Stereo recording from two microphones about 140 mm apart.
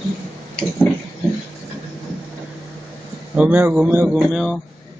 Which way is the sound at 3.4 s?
10° right (ahead or behind).